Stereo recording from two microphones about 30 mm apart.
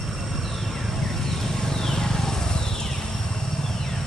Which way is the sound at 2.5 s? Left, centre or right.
Left.